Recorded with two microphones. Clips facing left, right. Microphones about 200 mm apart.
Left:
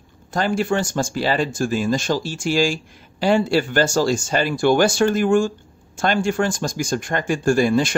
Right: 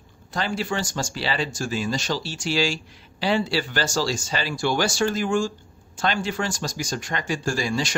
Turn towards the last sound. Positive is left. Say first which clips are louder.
# left 9 dB
turn(degrees=55)  # may be behind; listen again after turning